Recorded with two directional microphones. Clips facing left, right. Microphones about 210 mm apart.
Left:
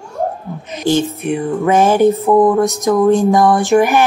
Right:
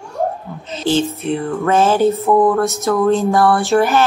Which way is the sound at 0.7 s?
15° left (ahead or behind).